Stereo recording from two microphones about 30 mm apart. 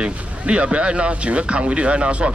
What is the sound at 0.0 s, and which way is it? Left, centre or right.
Speech, right.